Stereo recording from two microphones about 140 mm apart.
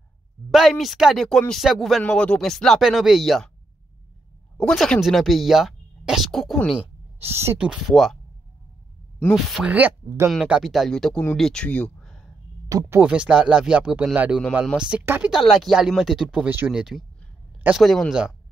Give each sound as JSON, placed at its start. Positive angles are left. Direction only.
{"t": 0.5, "sound": "speech", "side_deg": 0}
{"t": 4.6, "sound": "speech", "side_deg": 5}
{"t": 7.2, "sound": "speech", "side_deg": -20}
{"t": 7.5, "sound": "speech", "side_deg": -5}
{"t": 9.5, "sound": "speech", "side_deg": -10}
{"t": 10.3, "sound": "speech", "side_deg": -5}
{"t": 12.6, "sound": "speech", "side_deg": -25}
{"t": 13.0, "sound": "speech", "side_deg": -10}